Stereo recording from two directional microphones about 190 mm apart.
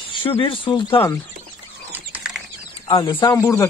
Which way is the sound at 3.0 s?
20° left (ahead or behind).